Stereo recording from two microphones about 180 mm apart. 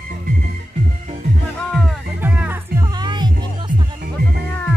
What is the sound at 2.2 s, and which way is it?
Music, 10° right (ahead or behind).